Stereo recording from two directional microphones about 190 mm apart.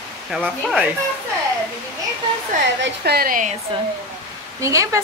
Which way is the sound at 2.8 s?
55° right (ahead or behind).